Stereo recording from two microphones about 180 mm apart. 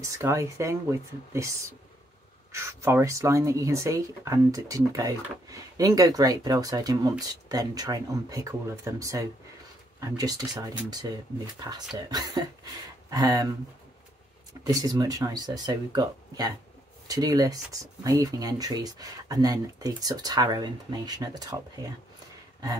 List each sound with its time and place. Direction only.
0.0 s speech: 15° right (ahead or behind)
2.5 s speech: 15° right (ahead or behind)
14.7 s speech: 20° right (ahead or behind)